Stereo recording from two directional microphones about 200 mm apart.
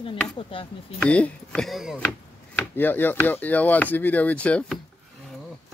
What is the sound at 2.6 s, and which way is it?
Speech, 10° left (ahead or behind).